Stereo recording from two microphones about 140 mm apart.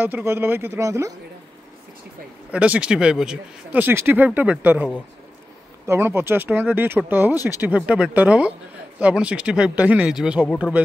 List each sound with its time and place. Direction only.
0.0 s speech: 15° right (ahead or behind)
2.5 s speech: 10° right (ahead or behind)
5.9 s speech: 15° right (ahead or behind)